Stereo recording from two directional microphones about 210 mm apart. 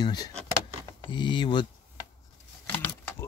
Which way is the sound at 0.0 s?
20° left (ahead or behind).